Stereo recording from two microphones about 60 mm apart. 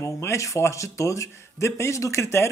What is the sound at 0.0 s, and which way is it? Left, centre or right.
Speech, left.